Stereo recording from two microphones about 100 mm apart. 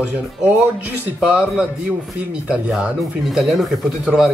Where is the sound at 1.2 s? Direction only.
10° right (ahead or behind).